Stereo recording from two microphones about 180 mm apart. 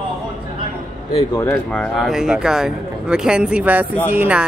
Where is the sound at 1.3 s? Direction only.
10° left (ahead or behind); by 4.4 s 10° right (ahead or behind).